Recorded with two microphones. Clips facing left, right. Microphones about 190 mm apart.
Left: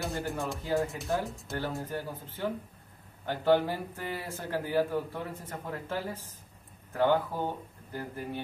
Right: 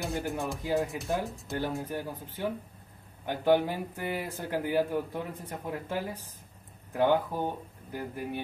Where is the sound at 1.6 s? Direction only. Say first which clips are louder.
Right 2 dB; 15° right (ahead or behind).